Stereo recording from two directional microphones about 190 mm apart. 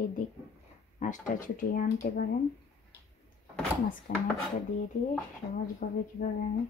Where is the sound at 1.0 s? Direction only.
45° left (ahead or behind).